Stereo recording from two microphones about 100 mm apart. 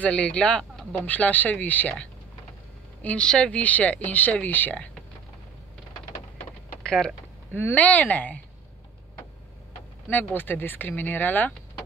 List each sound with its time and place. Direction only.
0.0 s speech: 10° left (ahead or behind)
6.8 s a sound: 5° left (ahead or behind)
7.5 s speech: 15° left (ahead or behind)
10.0 s speech: 20° left (ahead or behind)